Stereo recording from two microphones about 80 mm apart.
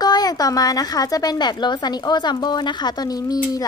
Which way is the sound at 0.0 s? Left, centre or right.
Left.